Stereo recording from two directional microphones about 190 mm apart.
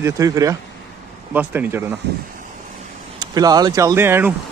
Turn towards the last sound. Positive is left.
turn(degrees=-10)  # may be behind; listen again after turning